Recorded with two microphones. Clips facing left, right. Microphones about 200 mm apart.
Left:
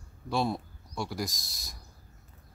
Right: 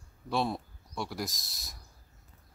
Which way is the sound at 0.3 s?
Centre (ahead or behind).